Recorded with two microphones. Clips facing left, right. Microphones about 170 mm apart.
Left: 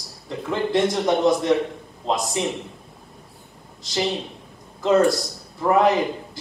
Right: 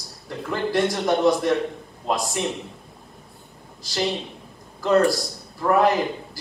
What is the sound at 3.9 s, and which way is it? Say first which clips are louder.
A man's voice: left 1 dB; centre (ahead or behind).